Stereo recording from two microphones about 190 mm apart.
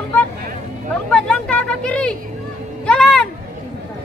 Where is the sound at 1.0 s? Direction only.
5° left (ahead or behind).